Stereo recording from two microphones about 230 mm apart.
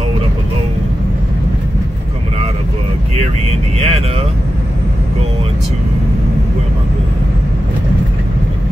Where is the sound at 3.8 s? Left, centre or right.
Right.